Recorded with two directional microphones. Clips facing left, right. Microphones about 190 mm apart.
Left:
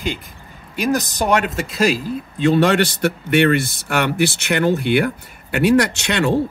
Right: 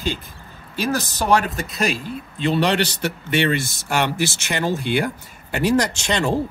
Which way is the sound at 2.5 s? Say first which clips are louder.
Left 2 dB; 50° left (ahead or behind).